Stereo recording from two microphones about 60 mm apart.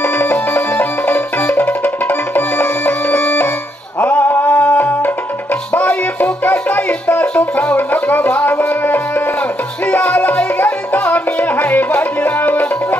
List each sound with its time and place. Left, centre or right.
0.0 s music: left